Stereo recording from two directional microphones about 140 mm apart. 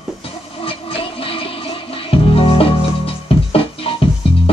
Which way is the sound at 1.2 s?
40° left (ahead or behind).